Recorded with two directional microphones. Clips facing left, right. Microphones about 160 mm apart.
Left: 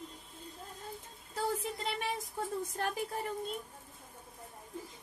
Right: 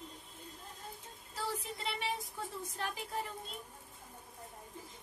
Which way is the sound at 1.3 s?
45° left (ahead or behind).